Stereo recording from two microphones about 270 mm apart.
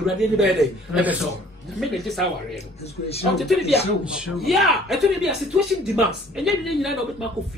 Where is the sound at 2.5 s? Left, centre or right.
Left.